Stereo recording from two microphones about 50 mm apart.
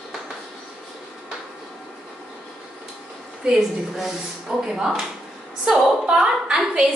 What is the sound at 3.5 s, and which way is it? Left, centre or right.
A woman's voice, centre.